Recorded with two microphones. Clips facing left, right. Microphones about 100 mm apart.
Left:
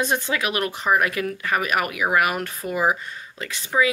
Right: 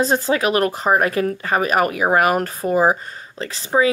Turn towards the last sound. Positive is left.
turn(degrees=-35)  # may be behind; listen again after turning